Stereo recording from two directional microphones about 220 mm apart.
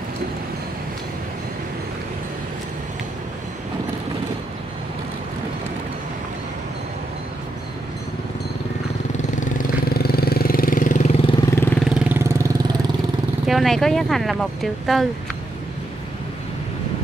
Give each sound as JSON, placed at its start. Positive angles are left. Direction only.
{"t": 9.1, "sound": "vehicle", "side_deg": 35}
{"t": 11.5, "sound": "vehicle", "side_deg": 10}
{"t": 11.9, "sound": "vehicle", "side_deg": -5}
{"t": 13.5, "sound": "speech", "side_deg": 0}